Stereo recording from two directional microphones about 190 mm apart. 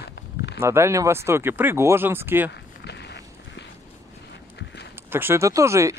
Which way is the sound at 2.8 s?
60° left (ahead or behind).